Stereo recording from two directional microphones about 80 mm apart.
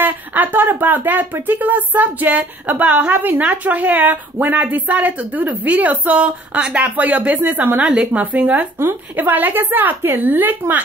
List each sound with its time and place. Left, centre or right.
0.0 s speech: right